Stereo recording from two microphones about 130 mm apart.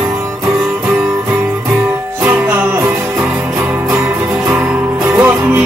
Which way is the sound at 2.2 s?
15° right (ahead or behind).